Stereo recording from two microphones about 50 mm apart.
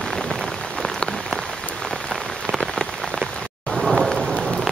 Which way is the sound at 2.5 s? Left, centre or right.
Centre.